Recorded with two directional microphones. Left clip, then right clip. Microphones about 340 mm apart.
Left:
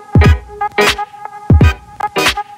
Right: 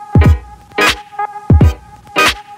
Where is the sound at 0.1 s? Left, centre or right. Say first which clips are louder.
Left 3 dB; centre.